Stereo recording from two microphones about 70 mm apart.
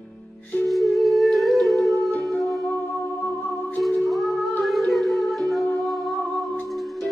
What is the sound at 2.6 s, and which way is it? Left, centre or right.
Music, left.